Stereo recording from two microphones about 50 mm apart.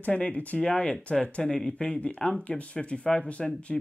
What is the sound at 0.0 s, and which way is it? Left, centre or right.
Speech, left.